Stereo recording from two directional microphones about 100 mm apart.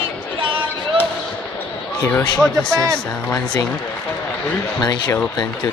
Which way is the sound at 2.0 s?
20° left (ahead or behind).